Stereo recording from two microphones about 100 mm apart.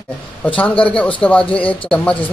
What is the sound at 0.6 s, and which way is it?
Speech, 15° left (ahead or behind).